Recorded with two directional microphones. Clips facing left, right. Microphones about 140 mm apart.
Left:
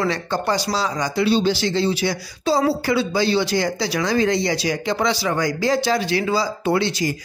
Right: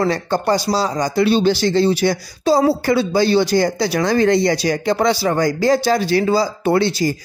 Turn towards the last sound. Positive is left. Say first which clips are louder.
# right 4 dB
turn(degrees=-35)  # may be behind; listen again after turning